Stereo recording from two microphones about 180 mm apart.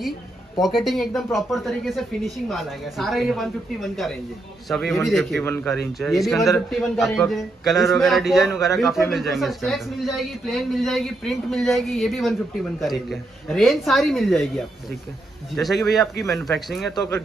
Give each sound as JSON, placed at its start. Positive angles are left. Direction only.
{"t": 0.6, "sound": "speech", "side_deg": 0}
{"t": 5.4, "sound": "speech", "side_deg": 15}
{"t": 5.9, "sound": "speech", "side_deg": 0}
{"t": 16.9, "sound": "speech", "side_deg": 20}